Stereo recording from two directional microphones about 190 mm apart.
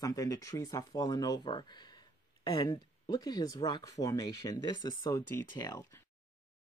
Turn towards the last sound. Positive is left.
turn(degrees=20)  # may be behind; listen again after turning